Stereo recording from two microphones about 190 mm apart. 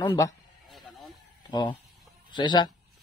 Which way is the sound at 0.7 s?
Centre (ahead or behind).